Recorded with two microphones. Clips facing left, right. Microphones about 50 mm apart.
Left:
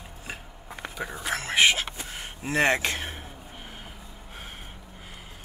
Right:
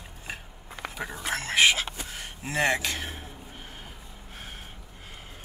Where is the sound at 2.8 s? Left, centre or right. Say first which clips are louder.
Left 2 dB; left.